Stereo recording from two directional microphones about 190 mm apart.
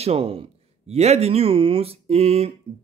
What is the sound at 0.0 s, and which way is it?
Speech, 30° right (ahead or behind).